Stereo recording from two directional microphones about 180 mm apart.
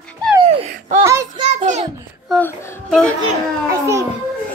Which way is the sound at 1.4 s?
40° right (ahead or behind).